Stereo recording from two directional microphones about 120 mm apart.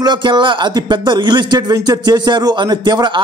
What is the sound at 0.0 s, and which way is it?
Speech, 40° right (ahead or behind).